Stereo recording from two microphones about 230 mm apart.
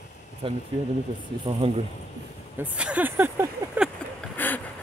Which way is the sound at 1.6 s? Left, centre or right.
Right.